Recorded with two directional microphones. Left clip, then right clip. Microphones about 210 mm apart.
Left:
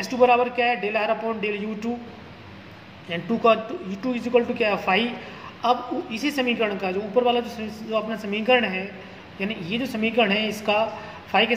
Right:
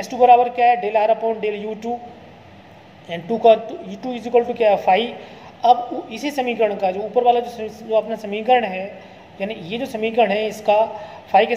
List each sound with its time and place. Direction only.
0.0 s a woman's voice: 10° right (ahead or behind)
3.1 s a woman's voice: 10° right (ahead or behind)